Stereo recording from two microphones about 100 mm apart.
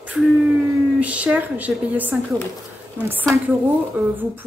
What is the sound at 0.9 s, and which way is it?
Speech, 15° right (ahead or behind).